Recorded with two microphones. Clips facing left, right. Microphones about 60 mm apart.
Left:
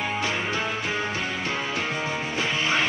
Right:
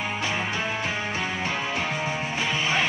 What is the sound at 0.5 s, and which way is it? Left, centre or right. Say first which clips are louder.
Music: left 1 dB; right.